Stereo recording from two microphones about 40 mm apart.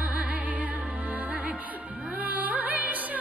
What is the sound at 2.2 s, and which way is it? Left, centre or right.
Music, right.